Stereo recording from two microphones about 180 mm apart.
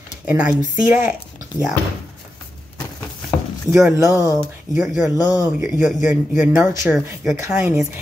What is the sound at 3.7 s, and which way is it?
Speech, 5° right (ahead or behind).